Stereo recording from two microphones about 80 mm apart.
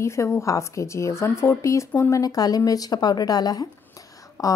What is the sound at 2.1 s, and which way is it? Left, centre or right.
Speech, left.